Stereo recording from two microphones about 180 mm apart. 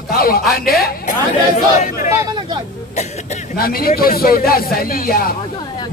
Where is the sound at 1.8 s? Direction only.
40° left (ahead or behind).